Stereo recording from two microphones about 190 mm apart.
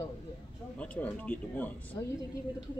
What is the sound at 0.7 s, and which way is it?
Speech, 5° left (ahead or behind).